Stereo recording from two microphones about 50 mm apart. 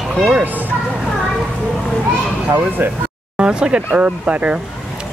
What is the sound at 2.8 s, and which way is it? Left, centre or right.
Speech, right.